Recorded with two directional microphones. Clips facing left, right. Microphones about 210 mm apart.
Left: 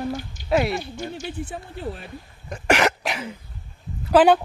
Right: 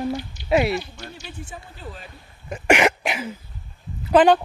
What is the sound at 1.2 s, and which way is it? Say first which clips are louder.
Speech: left 6 dB; 60° left (ahead or behind).